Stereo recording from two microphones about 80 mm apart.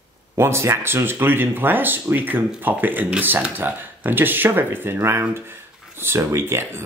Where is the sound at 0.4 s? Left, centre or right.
Right.